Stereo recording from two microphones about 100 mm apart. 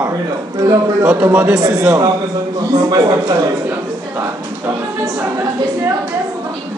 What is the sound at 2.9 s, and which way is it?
Speech, 40° right (ahead or behind).